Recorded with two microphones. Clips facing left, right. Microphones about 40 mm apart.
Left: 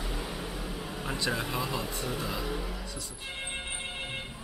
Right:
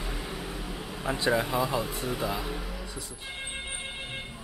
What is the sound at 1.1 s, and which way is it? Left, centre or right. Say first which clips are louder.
Speech: right 6 dB; centre.